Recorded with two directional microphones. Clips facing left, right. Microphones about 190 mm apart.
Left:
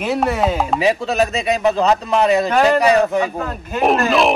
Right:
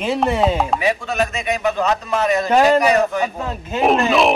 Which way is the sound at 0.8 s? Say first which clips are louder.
Left 3 dB; 30° left (ahead or behind).